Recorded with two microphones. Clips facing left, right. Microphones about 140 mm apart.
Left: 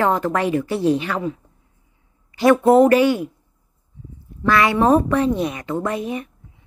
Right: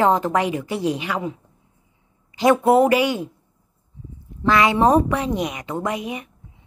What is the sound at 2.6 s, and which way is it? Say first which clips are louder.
Speech: left 5 dB; 10° right (ahead or behind).